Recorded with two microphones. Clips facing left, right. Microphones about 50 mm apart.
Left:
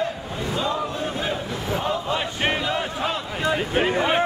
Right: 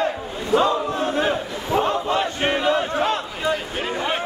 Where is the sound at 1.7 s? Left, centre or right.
Right.